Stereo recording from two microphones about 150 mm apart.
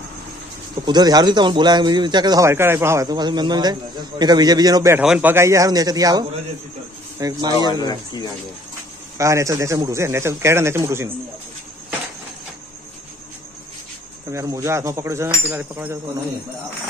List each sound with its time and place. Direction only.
0.8 s speech: 25° right (ahead or behind)
5.0 s speech: 5° right (ahead or behind)
5.3 s speech: 20° right (ahead or behind)
7.8 s speech: 25° left (ahead or behind)
9.2 s speech: 20° right (ahead or behind)
14.3 s speech: 20° right (ahead or behind)